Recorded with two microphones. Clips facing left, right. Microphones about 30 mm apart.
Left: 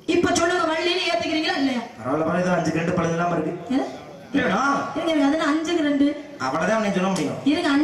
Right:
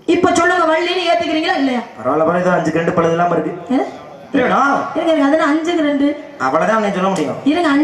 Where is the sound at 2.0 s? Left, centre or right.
Right.